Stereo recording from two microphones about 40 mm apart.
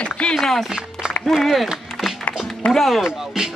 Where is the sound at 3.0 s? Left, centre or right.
Centre.